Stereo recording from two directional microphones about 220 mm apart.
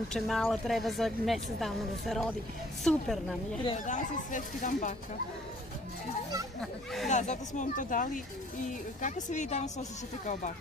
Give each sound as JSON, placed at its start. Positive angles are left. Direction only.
{"t": 0.1, "sound": "speech", "side_deg": 0}
{"t": 3.8, "sound": "speech", "side_deg": 35}
{"t": 6.6, "sound": "speech", "side_deg": 0}
{"t": 7.1, "sound": "speech", "side_deg": 30}